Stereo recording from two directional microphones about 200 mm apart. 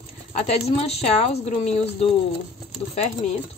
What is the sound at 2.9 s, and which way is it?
Speech, 35° left (ahead or behind).